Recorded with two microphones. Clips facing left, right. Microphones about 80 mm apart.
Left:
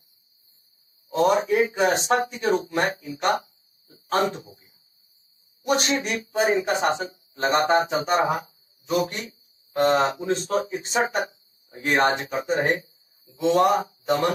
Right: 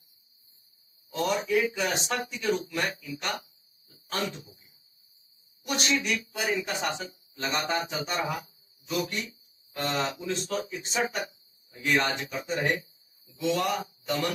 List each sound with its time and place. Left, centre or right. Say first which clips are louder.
1.1 s speech: left 7 dB; left